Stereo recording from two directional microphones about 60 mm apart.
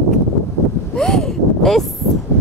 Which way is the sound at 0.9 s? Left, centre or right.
Centre.